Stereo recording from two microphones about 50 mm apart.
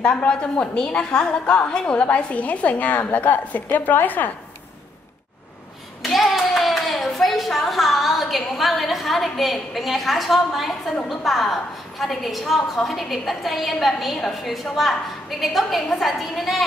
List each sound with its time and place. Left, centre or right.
0.3 s a woman's voice: centre; by 4.3 s left
6.0 s a woman's voice: centre